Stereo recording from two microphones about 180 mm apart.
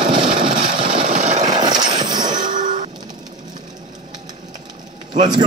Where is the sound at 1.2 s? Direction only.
40° right (ahead or behind).